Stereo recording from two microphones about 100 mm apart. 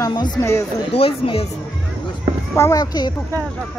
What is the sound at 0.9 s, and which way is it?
Speech, 70° left (ahead or behind).